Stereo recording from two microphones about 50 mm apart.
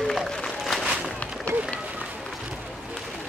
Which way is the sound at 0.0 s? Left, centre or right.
Centre.